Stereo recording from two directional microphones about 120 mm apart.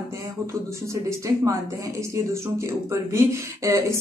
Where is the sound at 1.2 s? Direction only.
25° right (ahead or behind).